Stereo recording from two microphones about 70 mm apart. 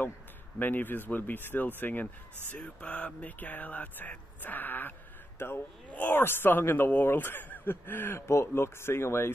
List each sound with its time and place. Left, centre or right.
0.6 s speech: left
8.3 s speech: left